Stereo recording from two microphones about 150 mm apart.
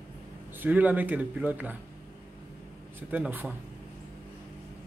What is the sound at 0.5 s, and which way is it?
Speech, 10° right (ahead or behind).